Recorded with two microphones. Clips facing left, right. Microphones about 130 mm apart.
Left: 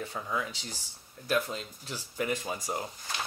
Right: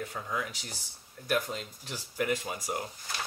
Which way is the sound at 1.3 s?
15° right (ahead or behind).